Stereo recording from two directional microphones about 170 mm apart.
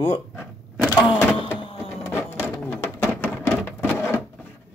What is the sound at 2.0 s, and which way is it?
Printer, 15° left (ahead or behind).